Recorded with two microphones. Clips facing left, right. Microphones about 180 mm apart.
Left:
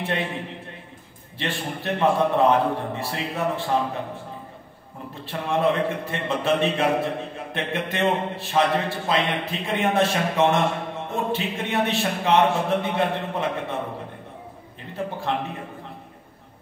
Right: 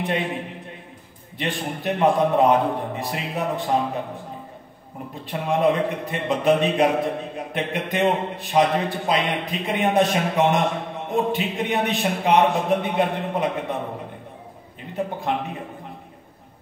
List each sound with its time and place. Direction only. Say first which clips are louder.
0.0 s a man's voice: right 2 dB; 15° right (ahead or behind)
1.4 s a man's voice: right 2 dB; 15° right (ahead or behind)
5.2 s a man's voice: right 2 dB; 15° right (ahead or behind)
15.0 s a man's voice: right 2 dB; 15° right (ahead or behind)